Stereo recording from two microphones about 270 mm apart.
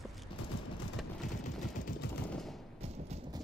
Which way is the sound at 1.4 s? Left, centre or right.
Left.